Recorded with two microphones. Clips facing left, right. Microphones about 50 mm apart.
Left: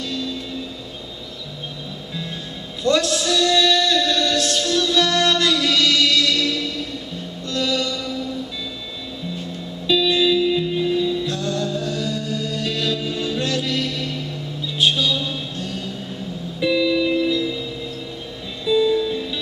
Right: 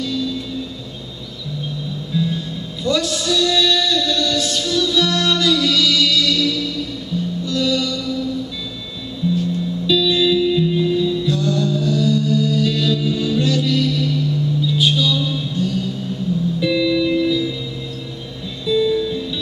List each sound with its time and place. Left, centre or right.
0.0 s music: centre
2.8 s music: centre
9.8 s music: left
11.2 s music: centre
16.6 s music: centre
18.7 s music: centre